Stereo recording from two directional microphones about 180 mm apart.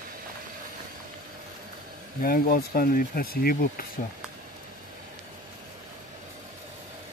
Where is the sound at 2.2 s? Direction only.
55° left (ahead or behind).